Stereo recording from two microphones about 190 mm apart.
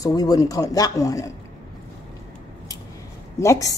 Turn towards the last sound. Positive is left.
turn(degrees=15)  # may be behind; listen again after turning